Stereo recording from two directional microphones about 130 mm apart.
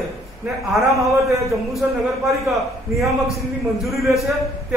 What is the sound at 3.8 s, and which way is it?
Speech, centre (ahead or behind).